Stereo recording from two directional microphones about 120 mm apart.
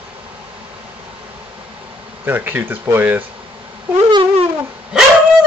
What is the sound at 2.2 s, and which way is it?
Speech, 15° right (ahead or behind).